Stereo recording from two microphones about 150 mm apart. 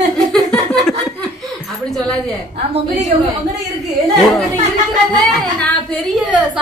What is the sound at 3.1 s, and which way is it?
Speech, 55° right (ahead or behind).